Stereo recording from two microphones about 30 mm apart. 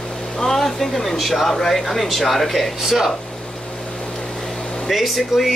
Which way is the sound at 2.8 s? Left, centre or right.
Centre.